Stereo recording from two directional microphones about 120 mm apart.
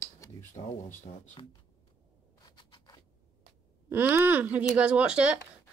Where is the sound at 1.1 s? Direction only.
65° left (ahead or behind).